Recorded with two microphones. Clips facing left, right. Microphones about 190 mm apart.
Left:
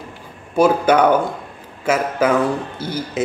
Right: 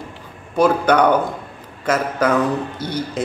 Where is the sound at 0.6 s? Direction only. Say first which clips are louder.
Left 1 dB; 5° left (ahead or behind).